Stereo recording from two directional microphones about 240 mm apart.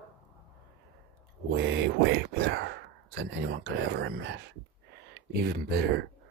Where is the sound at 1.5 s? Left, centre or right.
Right.